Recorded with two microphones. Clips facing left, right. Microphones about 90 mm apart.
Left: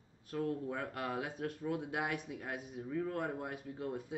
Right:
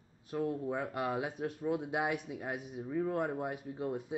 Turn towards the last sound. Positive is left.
turn(degrees=-20)  # may be behind; listen again after turning